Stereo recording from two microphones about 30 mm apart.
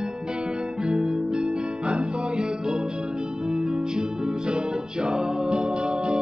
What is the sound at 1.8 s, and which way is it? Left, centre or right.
Music, right.